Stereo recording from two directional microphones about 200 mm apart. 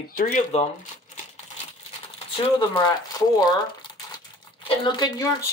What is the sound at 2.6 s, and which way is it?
Speech, 20° left (ahead or behind).